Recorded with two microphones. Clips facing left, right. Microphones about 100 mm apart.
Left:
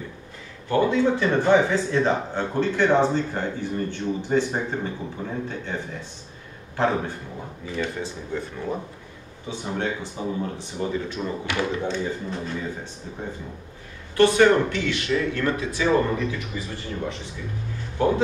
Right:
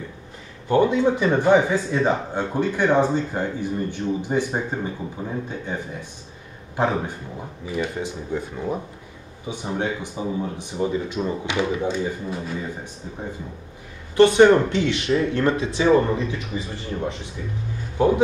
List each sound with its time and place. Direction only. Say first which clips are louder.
0.7 s speech: right 2 dB; 20° right (ahead or behind)
6.8 s speech: right 1 dB; 15° right (ahead or behind)
14.1 s speech: right 3 dB; 20° right (ahead or behind)